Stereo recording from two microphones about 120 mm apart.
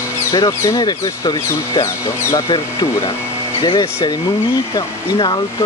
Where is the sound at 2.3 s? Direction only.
45° left (ahead or behind).